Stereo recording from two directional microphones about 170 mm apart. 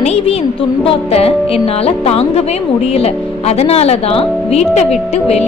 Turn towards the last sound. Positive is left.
turn(degrees=40)  # may be behind; listen again after turning